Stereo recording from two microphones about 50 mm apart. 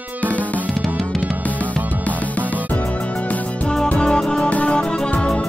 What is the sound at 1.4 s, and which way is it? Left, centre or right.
Music, left.